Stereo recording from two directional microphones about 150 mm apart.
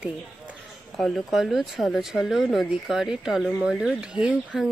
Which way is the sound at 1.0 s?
Centre (ahead or behind).